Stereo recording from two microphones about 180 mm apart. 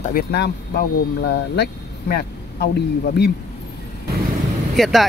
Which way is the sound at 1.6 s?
60° left (ahead or behind).